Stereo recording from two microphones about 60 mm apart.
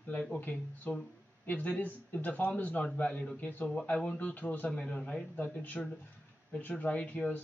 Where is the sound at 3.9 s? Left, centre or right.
Left.